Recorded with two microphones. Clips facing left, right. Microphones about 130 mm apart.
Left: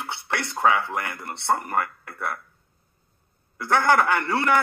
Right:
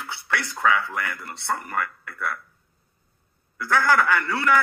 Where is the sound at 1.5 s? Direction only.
40° left (ahead or behind).